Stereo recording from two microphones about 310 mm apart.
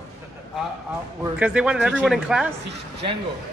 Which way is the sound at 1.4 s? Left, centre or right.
Centre.